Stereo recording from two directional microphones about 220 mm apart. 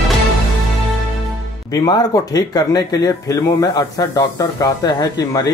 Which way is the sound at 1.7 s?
15° left (ahead or behind).